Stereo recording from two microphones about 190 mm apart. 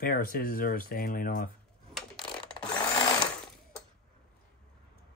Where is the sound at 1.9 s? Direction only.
Centre (ahead or behind).